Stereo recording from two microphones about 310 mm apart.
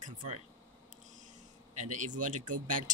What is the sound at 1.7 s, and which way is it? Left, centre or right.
A man's voice, right.